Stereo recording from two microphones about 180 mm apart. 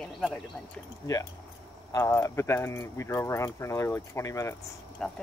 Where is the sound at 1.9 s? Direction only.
15° left (ahead or behind).